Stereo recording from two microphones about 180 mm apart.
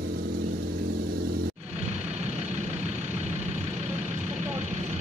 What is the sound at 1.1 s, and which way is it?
Vehicle, 60° right (ahead or behind).